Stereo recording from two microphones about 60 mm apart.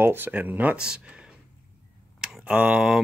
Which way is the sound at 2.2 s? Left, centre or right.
Centre.